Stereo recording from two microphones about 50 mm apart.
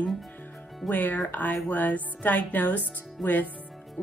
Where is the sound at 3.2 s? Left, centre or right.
Centre.